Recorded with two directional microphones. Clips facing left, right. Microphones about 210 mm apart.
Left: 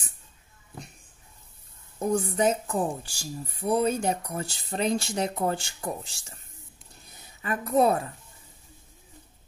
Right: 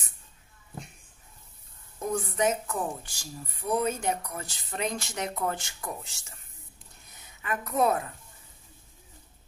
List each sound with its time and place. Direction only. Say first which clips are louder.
2.0 s a woman's voice: left 4 dB; 30° left (ahead or behind)